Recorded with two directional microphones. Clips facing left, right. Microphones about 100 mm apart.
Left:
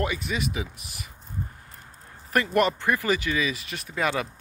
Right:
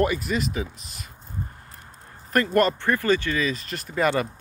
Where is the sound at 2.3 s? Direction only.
10° left (ahead or behind).